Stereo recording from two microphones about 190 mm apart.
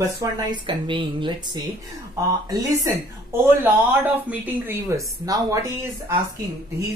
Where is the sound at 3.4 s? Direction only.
10° right (ahead or behind).